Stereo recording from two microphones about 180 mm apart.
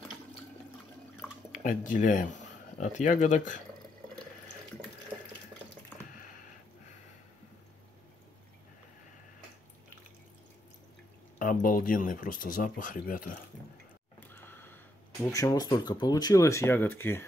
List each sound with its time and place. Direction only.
1.6 s speech: 45° left (ahead or behind)
11.3 s speech: 50° left (ahead or behind)
14.3 s gasp: 10° left (ahead or behind)
15.3 s speech: 20° left (ahead or behind)